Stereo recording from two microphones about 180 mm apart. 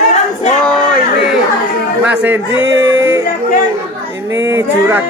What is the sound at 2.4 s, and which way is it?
Music, 90° right.